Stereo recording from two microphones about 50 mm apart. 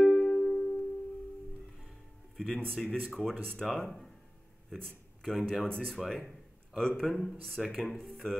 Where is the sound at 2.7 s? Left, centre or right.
Centre.